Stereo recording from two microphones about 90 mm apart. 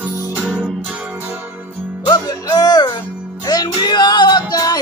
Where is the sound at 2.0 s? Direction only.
40° left (ahead or behind).